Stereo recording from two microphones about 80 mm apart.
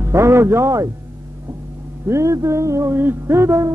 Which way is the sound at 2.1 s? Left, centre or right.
Right.